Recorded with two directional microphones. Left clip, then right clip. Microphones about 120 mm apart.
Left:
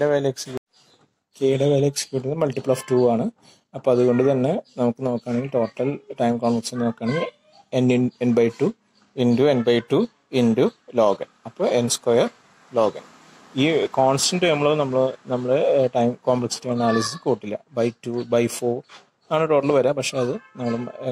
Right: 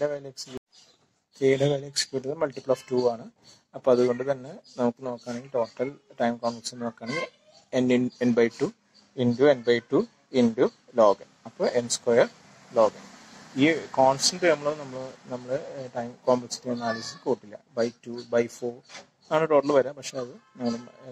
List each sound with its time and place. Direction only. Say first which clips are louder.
0.0 s speech: left 9 dB; 25° left (ahead or behind)
1.6 s speech: left 6 dB; 30° left (ahead or behind)
11.9 s a man's voice: left 3 dB; 40° left (ahead or behind)
13.6 s a man's voice: left 3 dB; 30° left (ahead or behind)
14.1 s speech: left 3 dB; 40° left (ahead or behind)
16.0 s a man's voice: left 5 dB; 40° left (ahead or behind)
16.8 s speech: left 13 dB; 15° left (ahead or behind)
17.5 s a man's voice: left 5 dB; 40° left (ahead or behind)
19.2 s a man's voice: left 3 dB; 30° left (ahead or behind)
20.2 s speech: left 10 dB; 30° left (ahead or behind)